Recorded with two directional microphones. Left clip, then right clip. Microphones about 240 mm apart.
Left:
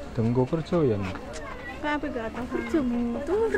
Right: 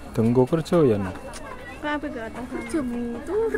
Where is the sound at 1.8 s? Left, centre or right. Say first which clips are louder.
Right 1 dB; centre.